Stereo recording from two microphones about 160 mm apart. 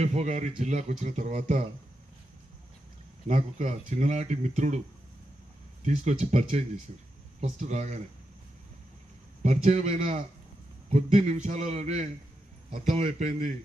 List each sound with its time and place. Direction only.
0.0 s speech: 45° right (ahead or behind)
3.3 s speech: 50° right (ahead or behind)
5.9 s speech: 45° right (ahead or behind)
9.4 s speech: 45° right (ahead or behind)